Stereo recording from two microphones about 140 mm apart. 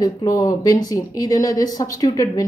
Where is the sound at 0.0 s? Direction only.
25° left (ahead or behind).